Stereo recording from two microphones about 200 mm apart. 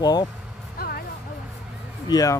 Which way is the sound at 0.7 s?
50° left (ahead or behind).